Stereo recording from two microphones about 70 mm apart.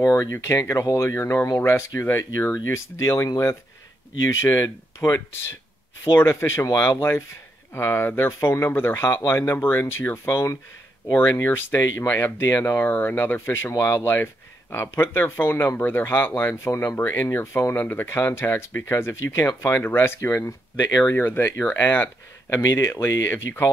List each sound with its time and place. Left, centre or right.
0.0 s speech: left
6.6 s speech: left
11.1 s speech: left
21.0 s speech: left
22.6 s speech: left